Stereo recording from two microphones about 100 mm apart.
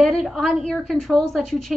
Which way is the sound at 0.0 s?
Centre (ahead or behind).